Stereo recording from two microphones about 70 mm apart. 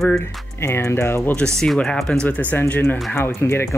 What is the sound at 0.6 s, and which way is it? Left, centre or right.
Speech, left.